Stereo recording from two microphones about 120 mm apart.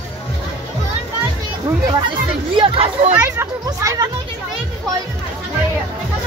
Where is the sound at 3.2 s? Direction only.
25° right (ahead or behind).